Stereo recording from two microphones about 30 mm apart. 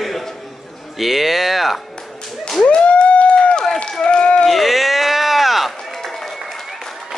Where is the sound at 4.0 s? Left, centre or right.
Left.